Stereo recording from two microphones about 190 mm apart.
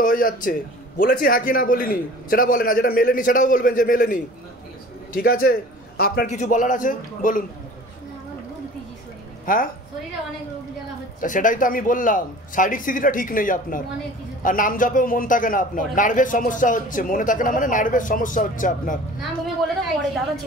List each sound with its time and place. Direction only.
0.0 s a man's voice: 45° left (ahead or behind)
9.5 s a man's voice: 45° left (ahead or behind)
11.1 s a man's voice: 45° left (ahead or behind)